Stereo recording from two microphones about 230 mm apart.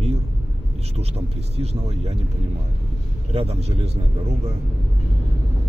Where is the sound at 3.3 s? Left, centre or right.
Right.